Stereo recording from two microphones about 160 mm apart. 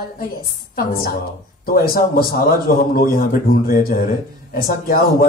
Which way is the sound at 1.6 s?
70° left (ahead or behind).